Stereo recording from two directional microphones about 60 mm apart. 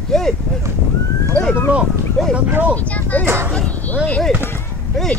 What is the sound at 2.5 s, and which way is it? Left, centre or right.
Speech, right.